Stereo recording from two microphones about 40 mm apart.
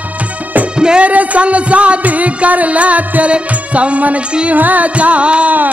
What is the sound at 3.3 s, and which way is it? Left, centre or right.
Music, right.